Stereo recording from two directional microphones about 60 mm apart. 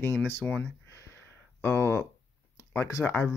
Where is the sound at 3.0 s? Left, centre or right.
Centre.